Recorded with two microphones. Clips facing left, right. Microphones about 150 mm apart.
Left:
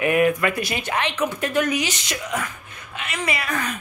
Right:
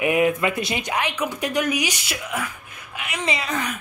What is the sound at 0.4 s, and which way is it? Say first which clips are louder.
A woman's voice: even; 20° right (ahead or behind).